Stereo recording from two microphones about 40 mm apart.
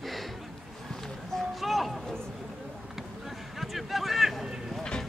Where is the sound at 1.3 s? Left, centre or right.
Centre.